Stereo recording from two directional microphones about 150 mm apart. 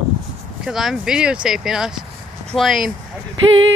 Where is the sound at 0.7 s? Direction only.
5° right (ahead or behind).